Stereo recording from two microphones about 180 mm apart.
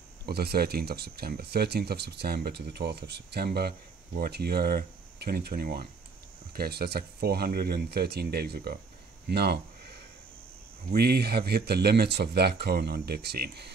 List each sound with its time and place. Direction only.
0.3 s speech: 60° right (ahead or behind)